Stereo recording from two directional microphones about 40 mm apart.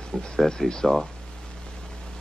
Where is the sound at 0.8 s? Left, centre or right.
Centre.